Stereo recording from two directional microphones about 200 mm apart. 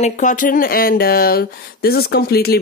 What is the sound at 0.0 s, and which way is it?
Speech, 40° left (ahead or behind).